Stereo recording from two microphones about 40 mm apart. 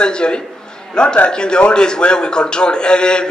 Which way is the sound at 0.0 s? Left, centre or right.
Left.